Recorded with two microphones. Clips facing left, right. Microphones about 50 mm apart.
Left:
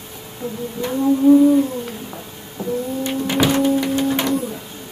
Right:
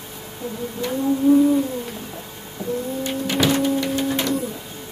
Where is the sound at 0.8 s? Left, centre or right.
Centre.